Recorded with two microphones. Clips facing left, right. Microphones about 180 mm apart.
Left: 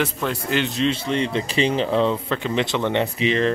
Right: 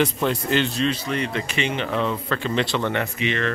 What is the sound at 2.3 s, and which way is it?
Speech, 15° left (ahead or behind).